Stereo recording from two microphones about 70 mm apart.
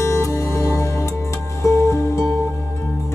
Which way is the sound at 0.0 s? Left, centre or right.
Left.